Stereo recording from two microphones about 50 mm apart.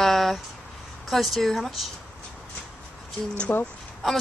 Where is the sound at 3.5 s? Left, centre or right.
Left.